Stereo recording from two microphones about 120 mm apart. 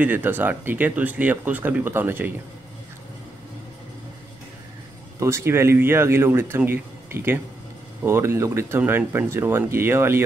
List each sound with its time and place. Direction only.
0.0 s speech: 15° right (ahead or behind)
5.2 s speech: 20° right (ahead or behind)